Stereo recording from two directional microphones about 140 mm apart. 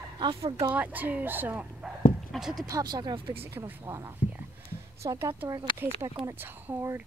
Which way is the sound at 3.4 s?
15° right (ahead or behind).